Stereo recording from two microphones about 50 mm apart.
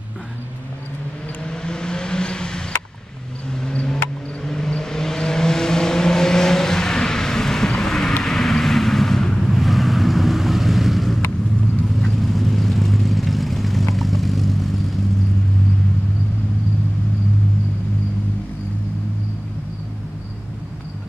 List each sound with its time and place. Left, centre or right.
1.4 s vehicle: centre
3.5 s a sound: centre
4.5 s vehicle: centre